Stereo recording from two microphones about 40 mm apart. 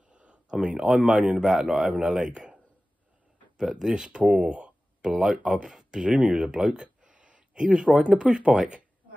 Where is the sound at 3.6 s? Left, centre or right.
Centre; by 6.4 s right.